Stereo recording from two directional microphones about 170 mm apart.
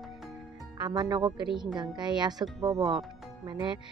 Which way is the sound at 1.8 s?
25° right (ahead or behind).